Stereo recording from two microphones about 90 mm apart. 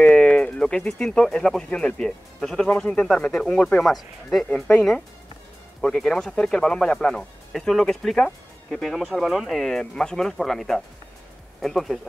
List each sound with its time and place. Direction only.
0.0 s speech: 10° left (ahead or behind)
4.5 s speech: 15° left (ahead or behind)